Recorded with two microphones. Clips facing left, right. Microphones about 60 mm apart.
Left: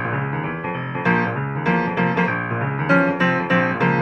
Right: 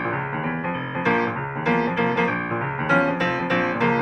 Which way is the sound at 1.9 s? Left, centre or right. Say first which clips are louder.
Left 1 dB; left.